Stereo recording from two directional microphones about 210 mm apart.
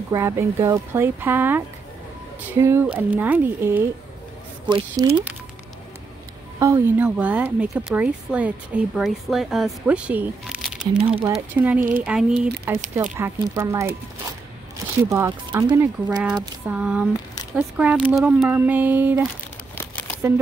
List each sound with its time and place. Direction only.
0.1 s speech: 15° right (ahead or behind)
6.6 s speech: 10° right (ahead or behind)
15.0 s speech: 15° right (ahead or behind)
16.6 s speech: 5° right (ahead or behind)